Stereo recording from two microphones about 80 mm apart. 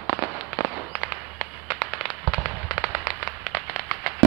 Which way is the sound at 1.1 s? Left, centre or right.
Centre.